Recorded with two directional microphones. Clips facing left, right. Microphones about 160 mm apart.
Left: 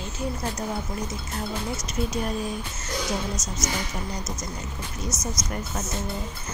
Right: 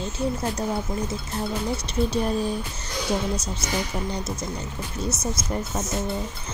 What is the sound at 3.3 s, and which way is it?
A woman's voice, 30° right (ahead or behind).